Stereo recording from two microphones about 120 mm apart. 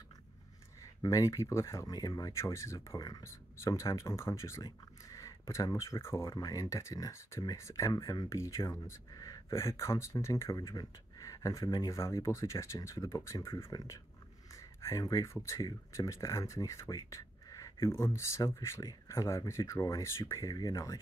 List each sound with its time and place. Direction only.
1.0 s speech: 30° left (ahead or behind)
14.5 s a sound: 25° left (ahead or behind)
15.4 s speech: 25° left (ahead or behind)